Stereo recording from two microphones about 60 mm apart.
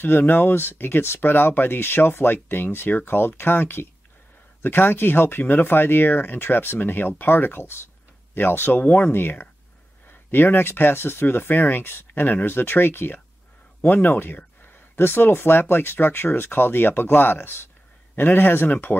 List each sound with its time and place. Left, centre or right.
0.0 s speech: left